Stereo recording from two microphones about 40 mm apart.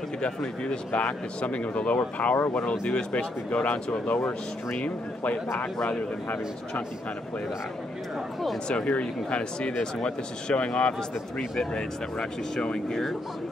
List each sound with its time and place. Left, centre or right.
1.4 s speech: left
8.6 s speech: left
11.0 s speech: centre